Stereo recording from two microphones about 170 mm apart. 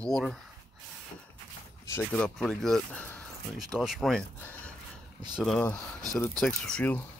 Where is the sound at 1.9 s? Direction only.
5° left (ahead or behind).